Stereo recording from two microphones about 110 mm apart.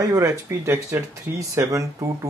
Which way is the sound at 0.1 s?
30° right (ahead or behind).